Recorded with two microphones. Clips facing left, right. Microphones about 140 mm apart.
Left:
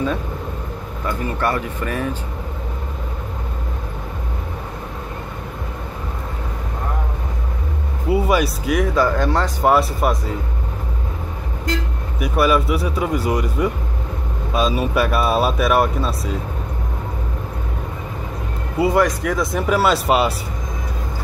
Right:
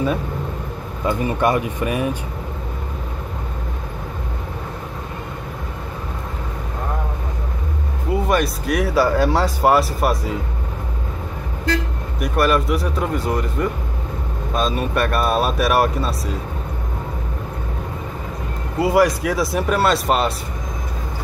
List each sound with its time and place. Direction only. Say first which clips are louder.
1.0 s speech: right 3 dB; 15° right (ahead or behind)
8.1 s speech: left 2 dB; 5° left (ahead or behind)
12.2 s speech: left 1 dB; 5° left (ahead or behind)
18.8 s speech: right 1 dB; 5° right (ahead or behind)